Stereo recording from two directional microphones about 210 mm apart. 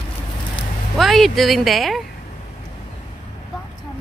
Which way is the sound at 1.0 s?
Centre (ahead or behind).